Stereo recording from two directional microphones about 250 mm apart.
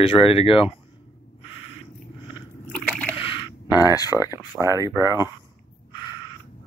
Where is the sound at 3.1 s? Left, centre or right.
Left.